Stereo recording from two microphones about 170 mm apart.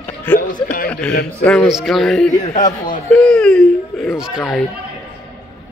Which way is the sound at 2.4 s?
45° left (ahead or behind).